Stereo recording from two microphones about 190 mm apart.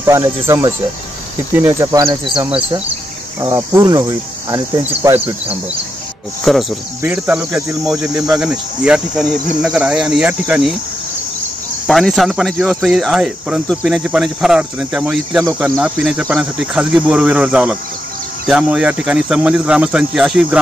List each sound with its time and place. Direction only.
0.0 s speech: 15° right (ahead or behind)
3.3 s cricket: 15° right (ahead or behind)
5.0 s speech: 10° right (ahead or behind)
6.5 s cricket: centre (ahead or behind)
7.0 s speech: 10° right (ahead or behind)
8.3 s cricket: 5° right (ahead or behind)
11.9 s cricket: centre (ahead or behind)